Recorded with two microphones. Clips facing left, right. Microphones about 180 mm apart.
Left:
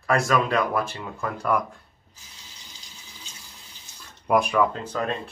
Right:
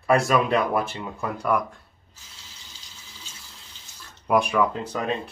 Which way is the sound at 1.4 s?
Centre (ahead or behind).